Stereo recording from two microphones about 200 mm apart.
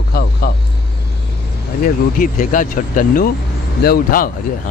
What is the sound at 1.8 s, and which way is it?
Speech, 45° left (ahead or behind).